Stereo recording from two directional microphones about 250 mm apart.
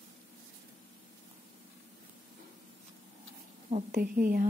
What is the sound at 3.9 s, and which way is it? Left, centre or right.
Speech, right.